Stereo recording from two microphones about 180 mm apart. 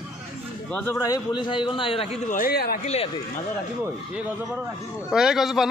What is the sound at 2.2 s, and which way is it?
Speech, 45° left (ahead or behind).